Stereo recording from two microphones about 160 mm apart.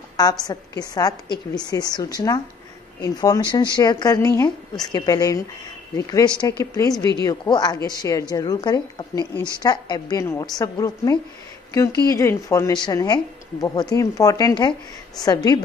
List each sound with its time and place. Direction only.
0.2 s a woman's voice: 25° left (ahead or behind)